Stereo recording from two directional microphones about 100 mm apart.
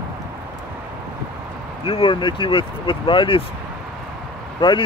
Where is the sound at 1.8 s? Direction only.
55° left (ahead or behind).